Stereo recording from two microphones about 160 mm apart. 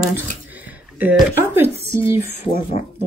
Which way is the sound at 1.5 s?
15° right (ahead or behind).